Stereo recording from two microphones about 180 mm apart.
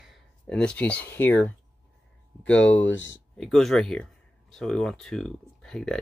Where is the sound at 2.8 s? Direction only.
90° left.